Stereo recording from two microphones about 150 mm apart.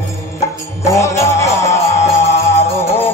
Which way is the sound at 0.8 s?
20° left (ahead or behind).